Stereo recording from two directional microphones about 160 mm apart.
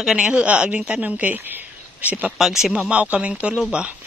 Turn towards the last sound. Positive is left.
turn(degrees=-5)  # may be behind; listen again after turning